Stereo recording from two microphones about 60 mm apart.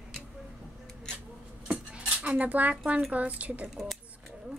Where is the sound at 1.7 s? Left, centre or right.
Right.